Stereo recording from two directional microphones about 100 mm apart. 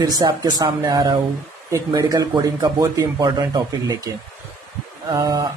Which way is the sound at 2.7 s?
35° right (ahead or behind).